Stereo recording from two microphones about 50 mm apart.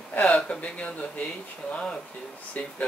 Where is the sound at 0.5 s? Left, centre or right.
Left.